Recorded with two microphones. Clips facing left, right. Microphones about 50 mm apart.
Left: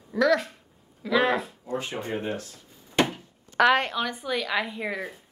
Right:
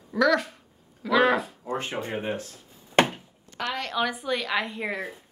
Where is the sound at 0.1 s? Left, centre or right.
Centre.